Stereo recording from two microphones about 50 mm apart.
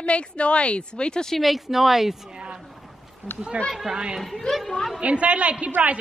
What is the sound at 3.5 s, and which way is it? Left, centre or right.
Speech, right.